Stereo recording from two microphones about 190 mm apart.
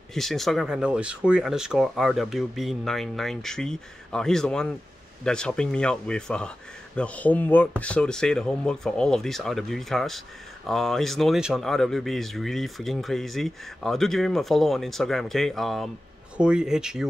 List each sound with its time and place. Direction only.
0.1 s speech: centre (ahead or behind)